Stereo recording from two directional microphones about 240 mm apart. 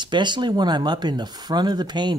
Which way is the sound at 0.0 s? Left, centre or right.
Centre.